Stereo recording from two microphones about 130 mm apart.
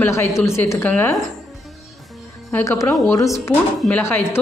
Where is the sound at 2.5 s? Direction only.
20° left (ahead or behind).